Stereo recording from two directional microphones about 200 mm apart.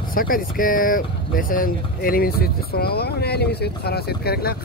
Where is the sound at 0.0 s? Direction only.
45° left (ahead or behind).